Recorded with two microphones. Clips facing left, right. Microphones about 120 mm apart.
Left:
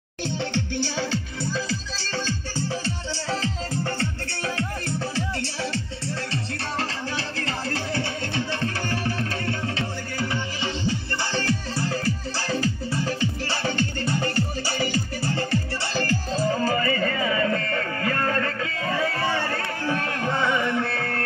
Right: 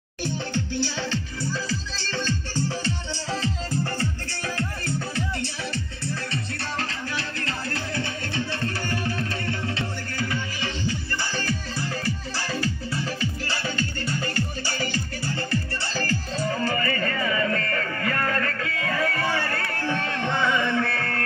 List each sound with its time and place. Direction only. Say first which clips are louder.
0.9 s music: left 2 dB; 15° left (ahead or behind)
10.2 s music: left 1 dB; 25° left (ahead or behind)
16.3 s music: left 3 dB; 30° left (ahead or behind)
16.7 s music: left 3 dB; 10° left (ahead or behind)